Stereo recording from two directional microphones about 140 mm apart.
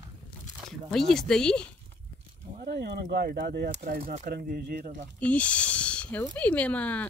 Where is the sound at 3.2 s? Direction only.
90° right.